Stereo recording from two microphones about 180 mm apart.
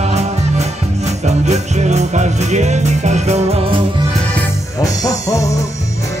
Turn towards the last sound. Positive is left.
turn(degrees=20)  # may be behind; listen again after turning